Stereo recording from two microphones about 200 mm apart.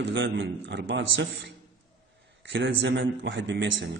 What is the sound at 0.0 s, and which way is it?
A man's voice, 65° right (ahead or behind).